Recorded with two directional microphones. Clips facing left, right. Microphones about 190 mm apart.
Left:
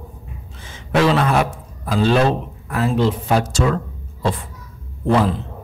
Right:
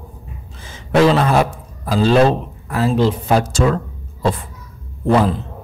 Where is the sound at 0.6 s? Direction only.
35° right (ahead or behind).